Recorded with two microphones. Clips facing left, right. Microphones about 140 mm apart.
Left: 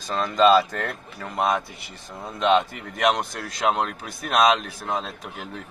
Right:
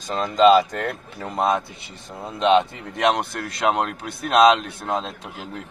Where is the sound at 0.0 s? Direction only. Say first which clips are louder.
Right 3 dB; 20° right (ahead or behind).